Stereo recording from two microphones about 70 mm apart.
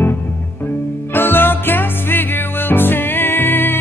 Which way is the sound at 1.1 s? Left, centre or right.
Left.